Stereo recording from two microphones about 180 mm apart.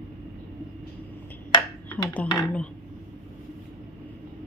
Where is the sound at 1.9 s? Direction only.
10° left (ahead or behind).